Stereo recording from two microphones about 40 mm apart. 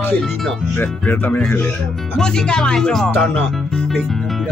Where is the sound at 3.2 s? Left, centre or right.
Left.